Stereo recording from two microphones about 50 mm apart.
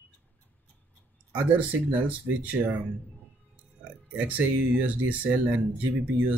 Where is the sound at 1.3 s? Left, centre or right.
Right.